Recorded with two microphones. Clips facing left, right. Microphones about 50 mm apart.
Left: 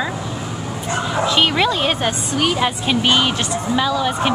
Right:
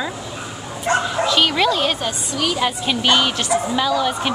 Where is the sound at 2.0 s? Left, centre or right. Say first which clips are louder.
Left 3 dB; left.